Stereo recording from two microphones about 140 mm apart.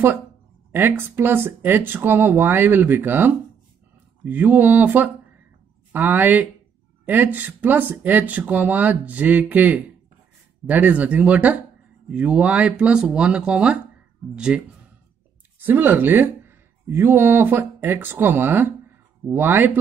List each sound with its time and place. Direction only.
0.7 s speech: 15° right (ahead or behind)
15.6 s speech: 15° right (ahead or behind)